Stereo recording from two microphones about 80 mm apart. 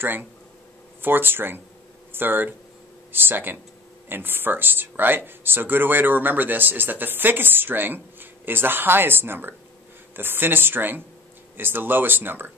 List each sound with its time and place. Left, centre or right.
0.0 s speech: right